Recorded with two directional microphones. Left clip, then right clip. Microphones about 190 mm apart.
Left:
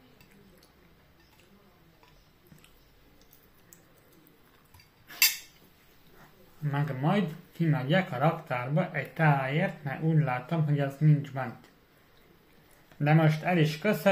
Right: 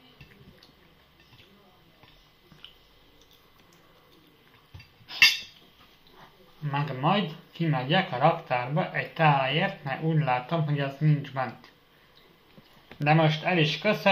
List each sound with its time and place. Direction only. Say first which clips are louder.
6.6 s speech: right 4 dB; 35° left (ahead or behind)
13.0 s speech: right 3 dB; 30° left (ahead or behind)